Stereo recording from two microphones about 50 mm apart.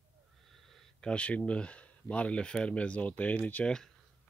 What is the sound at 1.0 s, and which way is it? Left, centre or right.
Speech, left.